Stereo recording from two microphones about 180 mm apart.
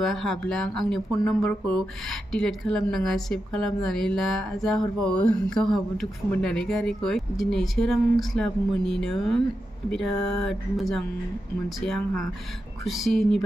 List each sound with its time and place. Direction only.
0.0 s a woman's voice: centre (ahead or behind)